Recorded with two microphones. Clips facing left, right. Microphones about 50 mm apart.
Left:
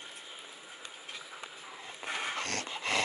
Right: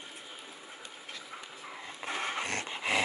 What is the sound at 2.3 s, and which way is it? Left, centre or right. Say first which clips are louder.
Dog: right 1 dB; centre.